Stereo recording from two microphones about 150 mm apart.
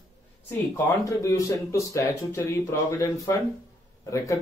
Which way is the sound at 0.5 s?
20° left (ahead or behind).